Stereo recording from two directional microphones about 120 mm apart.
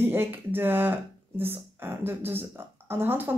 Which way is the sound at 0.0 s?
20° right (ahead or behind).